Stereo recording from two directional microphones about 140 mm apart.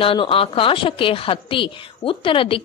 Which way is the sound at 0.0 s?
40° left (ahead or behind).